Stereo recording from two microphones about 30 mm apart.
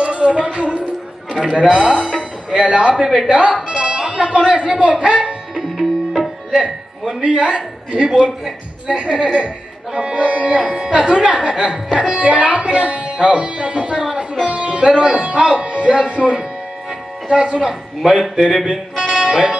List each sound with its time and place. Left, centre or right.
0.0 s speech: right
1.4 s speech: centre
1.7 s a man's voice: right
3.6 s music: right
4.2 s speech: right
5.5 s music: centre
7.2 s speech: right
17.6 s a man's voice: centre
18.7 s music: right